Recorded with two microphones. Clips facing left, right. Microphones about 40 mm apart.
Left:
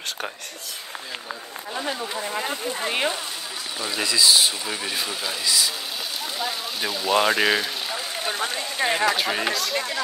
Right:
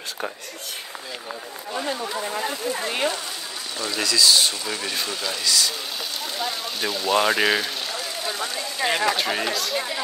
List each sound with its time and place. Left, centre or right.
2.8 s speech: left; by 7.7 s centre
8.3 s speech: left
8.9 s speech: centre